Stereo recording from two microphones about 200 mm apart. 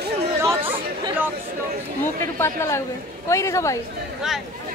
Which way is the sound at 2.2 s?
15° left (ahead or behind).